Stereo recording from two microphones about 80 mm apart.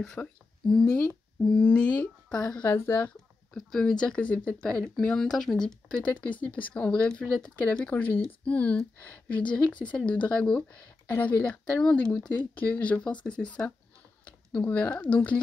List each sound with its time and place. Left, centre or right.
0.0 s speech: centre
2.7 s speech: left
3.5 s speech: centre
11.1 s speech: left